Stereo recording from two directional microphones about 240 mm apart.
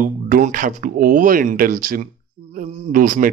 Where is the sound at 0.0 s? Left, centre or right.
Right.